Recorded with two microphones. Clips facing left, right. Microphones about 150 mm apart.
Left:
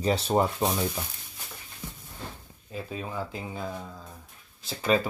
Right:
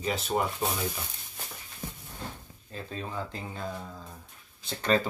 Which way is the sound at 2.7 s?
10° left (ahead or behind).